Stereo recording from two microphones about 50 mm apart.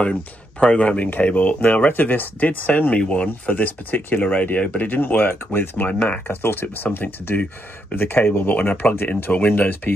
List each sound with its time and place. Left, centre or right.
0.0 s speech: left
1.1 s speech: left
3.0 s speech: left
5.3 s speech: left
5.8 s speech: left
6.2 s speech: left